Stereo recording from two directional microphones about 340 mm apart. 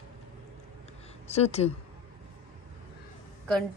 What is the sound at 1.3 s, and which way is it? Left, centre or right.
Speech, centre.